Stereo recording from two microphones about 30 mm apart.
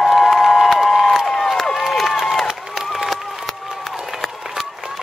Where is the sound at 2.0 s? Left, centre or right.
Centre.